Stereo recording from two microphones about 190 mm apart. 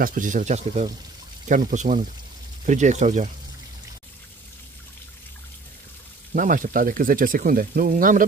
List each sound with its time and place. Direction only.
0.0 s speech: 45° right (ahead or behind)
6.3 s speech: 45° right (ahead or behind)